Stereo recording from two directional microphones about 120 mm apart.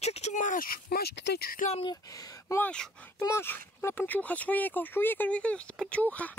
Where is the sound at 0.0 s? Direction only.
65° left (ahead or behind); by 0.6 s 90° left.